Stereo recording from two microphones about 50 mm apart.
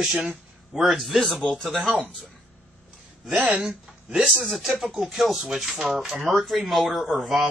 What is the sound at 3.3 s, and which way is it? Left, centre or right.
Speech, right.